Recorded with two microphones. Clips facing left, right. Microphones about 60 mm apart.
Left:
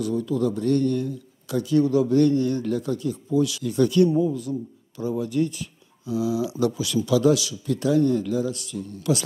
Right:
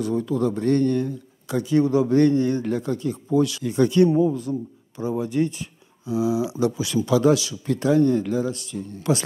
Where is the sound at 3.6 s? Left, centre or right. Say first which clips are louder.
Right 1 dB; right.